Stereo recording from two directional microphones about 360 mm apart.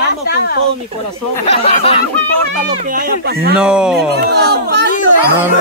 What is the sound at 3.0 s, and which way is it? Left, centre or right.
Speech, right.